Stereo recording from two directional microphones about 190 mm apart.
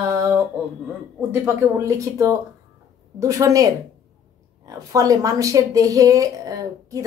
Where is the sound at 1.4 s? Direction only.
15° right (ahead or behind).